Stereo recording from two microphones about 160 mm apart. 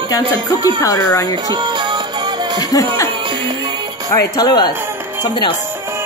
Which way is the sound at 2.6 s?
25° left (ahead or behind).